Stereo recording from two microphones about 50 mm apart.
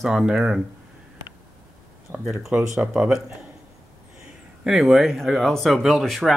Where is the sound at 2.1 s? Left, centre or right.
Right.